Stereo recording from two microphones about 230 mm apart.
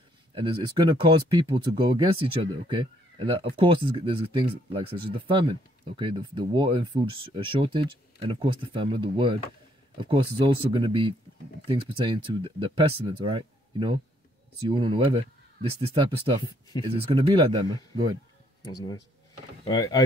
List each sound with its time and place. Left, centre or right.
0.3 s speech: right
16.4 s speech: centre
16.9 s speech: right
19.6 s speech: centre